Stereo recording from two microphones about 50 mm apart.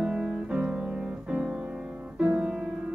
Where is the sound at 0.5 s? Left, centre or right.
Right.